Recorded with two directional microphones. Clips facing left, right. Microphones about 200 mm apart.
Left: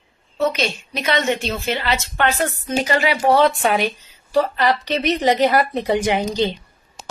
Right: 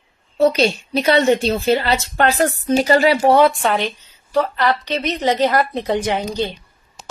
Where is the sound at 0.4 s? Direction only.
35° right (ahead or behind).